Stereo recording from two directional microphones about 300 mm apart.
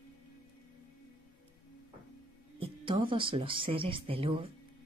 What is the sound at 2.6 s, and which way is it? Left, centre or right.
Speech, centre.